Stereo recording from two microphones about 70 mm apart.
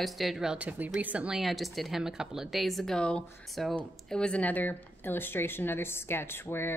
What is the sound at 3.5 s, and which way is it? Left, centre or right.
Speech, centre.